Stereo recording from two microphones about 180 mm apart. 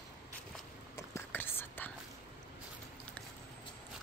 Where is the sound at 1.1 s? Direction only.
10° left (ahead or behind).